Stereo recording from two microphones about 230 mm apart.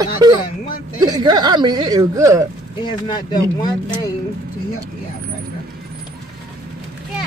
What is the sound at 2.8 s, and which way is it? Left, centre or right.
Speech, centre.